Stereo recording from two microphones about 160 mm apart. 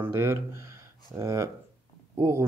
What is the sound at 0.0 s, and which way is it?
Speech, 15° right (ahead or behind).